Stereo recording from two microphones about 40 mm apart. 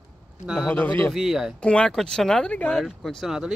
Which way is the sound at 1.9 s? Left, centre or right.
Centre.